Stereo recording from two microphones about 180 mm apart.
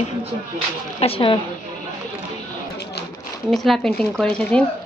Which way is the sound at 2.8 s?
65° left (ahead or behind).